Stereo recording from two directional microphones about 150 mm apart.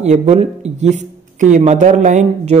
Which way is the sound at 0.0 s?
50° right (ahead or behind).